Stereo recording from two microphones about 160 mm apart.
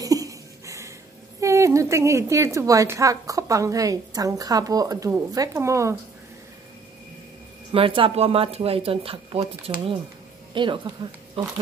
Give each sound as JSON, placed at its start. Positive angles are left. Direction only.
{"t": 0.0, "sound": "a sound", "side_deg": -20}
{"t": 1.4, "sound": "a woman's voice", "side_deg": -20}
{"t": 7.7, "sound": "speech", "side_deg": -35}